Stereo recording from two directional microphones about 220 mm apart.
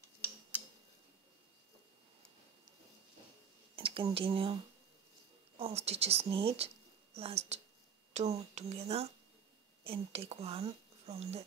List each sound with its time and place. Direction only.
3.7 s speech: 25° right (ahead or behind)
5.6 s speech: 25° right (ahead or behind)